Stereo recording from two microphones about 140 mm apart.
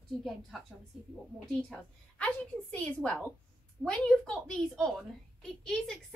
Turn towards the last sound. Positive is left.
turn(degrees=5)  # may be behind; listen again after turning